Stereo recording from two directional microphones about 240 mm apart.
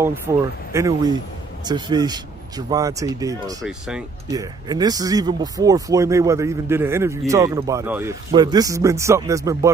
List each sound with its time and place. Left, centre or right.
0.3 s speech: centre
3.6 s speech: centre
4.3 s speech: centre